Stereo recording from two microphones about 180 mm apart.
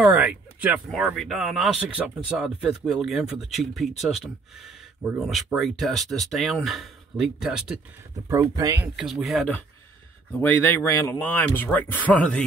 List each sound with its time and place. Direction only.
0.0 s speech: 10° right (ahead or behind)
8.3 s speech: 20° right (ahead or behind)
8.8 s speech: centre (ahead or behind)